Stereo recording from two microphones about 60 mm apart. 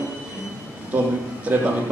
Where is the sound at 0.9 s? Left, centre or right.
Right.